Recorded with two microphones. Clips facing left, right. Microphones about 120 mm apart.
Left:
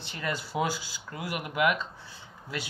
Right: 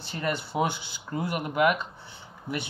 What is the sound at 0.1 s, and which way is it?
Speech, 25° right (ahead or behind).